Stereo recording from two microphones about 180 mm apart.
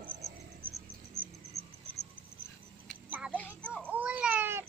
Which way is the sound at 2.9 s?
Centre (ahead or behind).